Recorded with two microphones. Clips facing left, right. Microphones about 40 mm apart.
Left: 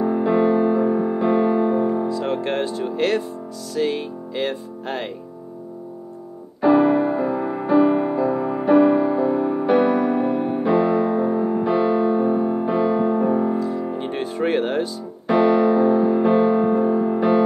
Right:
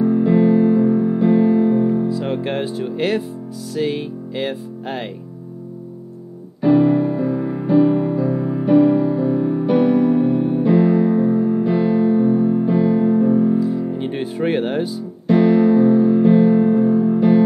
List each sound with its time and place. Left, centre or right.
0.0 s music: centre
2.0 s speech: centre
3.7 s music: centre
6.6 s music: centre
13.6 s music: centre